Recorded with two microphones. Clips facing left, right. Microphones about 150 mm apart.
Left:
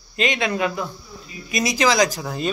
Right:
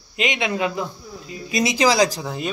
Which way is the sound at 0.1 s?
15° right (ahead or behind).